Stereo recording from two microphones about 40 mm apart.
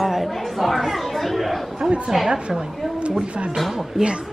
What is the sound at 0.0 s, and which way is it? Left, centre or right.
Chatter, centre.